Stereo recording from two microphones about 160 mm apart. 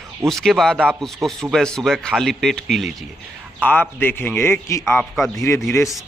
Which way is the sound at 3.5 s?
10° left (ahead or behind).